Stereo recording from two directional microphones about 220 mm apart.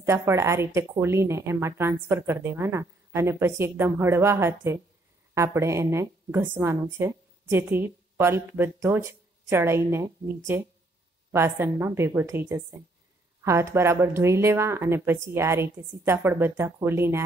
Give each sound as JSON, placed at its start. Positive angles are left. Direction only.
{"t": 0.0, "sound": "speech", "side_deg": -10}